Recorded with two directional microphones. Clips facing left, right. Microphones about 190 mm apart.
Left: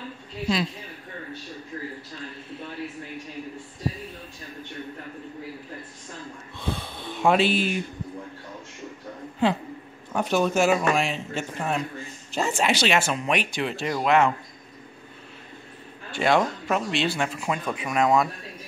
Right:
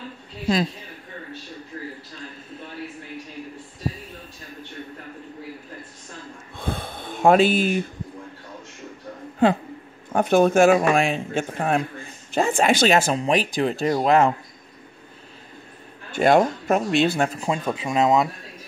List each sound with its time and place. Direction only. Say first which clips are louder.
6.5 s gasp: right 2 dB; 50° right (ahead or behind)
9.4 s a man's voice: right 5 dB; 50° right (ahead or behind)
16.2 s a man's voice: right 5 dB; 45° right (ahead or behind)
17.5 s speech: right 3 dB; 25° right (ahead or behind)